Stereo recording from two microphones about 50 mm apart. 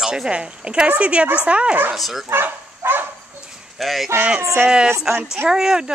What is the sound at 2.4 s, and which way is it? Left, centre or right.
Bow-wow, right.